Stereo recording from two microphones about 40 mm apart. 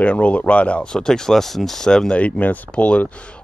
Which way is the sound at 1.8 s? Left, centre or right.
Centre.